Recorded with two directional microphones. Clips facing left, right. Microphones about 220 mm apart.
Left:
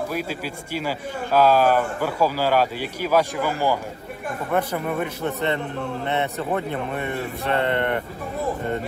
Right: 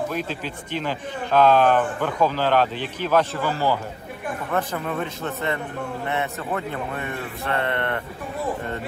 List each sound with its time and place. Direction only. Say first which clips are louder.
0.1 s a man's voice: left 1 dB; 10° left (ahead or behind)
6.0 s speech: left 3 dB; 25° left (ahead or behind)